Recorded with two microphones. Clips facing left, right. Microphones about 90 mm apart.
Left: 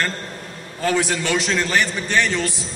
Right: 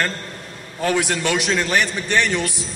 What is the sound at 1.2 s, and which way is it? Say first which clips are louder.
A man's voice: right 1 dB; 15° right (ahead or behind).